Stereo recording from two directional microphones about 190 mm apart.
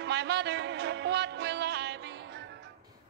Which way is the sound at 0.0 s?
65° right (ahead or behind).